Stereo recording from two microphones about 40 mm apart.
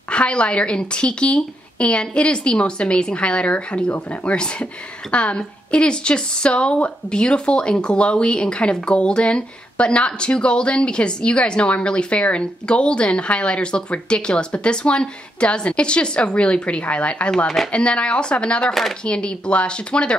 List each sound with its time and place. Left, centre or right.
0.1 s a woman's voice: left
18.7 s speech: centre
19.0 s a woman's voice: left